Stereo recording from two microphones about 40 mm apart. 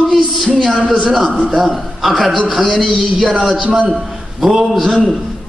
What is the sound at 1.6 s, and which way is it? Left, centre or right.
A man's voice, centre.